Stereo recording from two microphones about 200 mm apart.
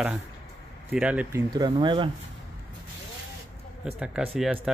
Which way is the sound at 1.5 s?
20° right (ahead or behind).